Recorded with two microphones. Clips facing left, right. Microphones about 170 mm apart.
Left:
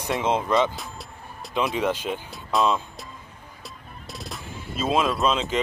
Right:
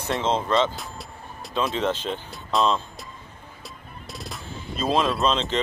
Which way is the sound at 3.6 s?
Centre (ahead or behind).